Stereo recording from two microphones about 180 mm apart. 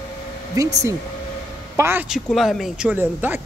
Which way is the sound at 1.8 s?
10° right (ahead or behind).